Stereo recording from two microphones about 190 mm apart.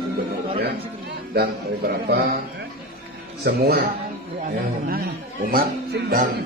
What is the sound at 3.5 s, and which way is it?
Speech, 60° right (ahead or behind).